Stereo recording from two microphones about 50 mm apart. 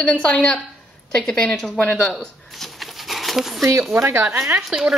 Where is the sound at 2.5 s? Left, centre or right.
Centre.